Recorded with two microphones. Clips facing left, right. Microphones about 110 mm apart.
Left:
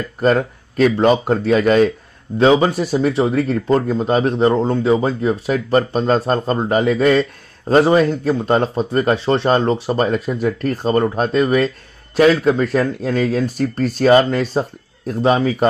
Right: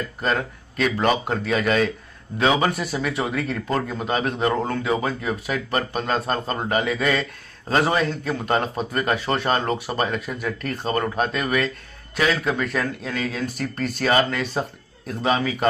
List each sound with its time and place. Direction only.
0.2 s speech: 40° left (ahead or behind)